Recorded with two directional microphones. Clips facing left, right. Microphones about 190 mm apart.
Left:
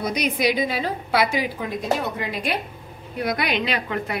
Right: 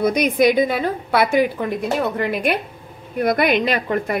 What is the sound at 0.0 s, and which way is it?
A woman's voice, 50° right (ahead or behind).